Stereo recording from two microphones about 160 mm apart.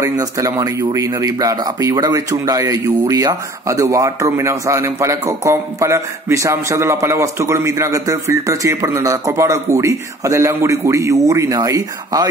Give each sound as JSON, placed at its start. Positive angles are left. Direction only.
{"t": 0.0, "sound": "speech", "side_deg": -20}